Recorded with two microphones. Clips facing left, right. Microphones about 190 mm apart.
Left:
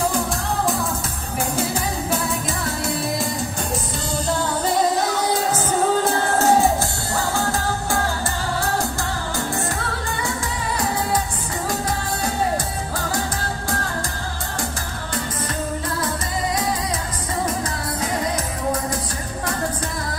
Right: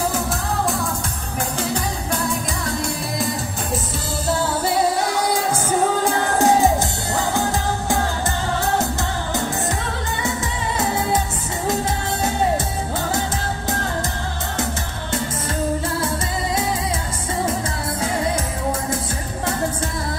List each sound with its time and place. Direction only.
4.6 s music: 10° right (ahead or behind)